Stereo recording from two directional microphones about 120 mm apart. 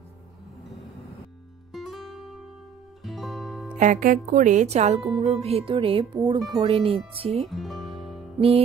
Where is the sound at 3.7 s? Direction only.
90° right; by 6.1 s 50° right (ahead or behind).